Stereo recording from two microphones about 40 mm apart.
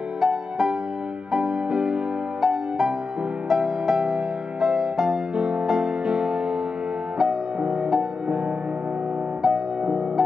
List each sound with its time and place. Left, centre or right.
0.2 s music: centre
9.4 s music: centre